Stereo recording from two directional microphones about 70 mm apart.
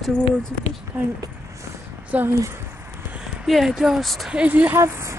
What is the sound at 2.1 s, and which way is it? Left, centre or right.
Speech, right.